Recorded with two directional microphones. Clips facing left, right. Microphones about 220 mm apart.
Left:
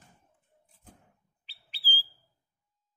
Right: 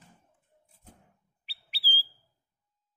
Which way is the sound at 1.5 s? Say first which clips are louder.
Even; 10° right (ahead or behind).